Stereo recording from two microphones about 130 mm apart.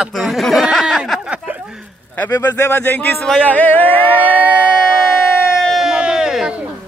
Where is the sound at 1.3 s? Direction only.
10° right (ahead or behind).